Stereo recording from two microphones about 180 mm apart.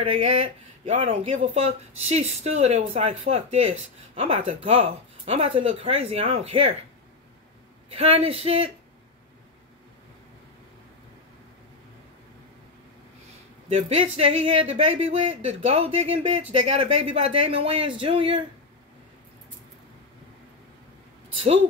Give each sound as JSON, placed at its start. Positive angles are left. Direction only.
{"t": 0.0, "sound": "speech", "side_deg": -30}
{"t": 7.9, "sound": "speech", "side_deg": -30}
{"t": 13.7, "sound": "speech", "side_deg": -35}